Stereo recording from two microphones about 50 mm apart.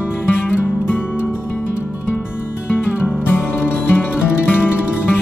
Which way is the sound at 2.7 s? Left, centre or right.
Left.